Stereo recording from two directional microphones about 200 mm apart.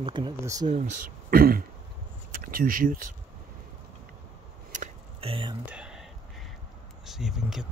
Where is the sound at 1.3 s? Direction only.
50° right (ahead or behind).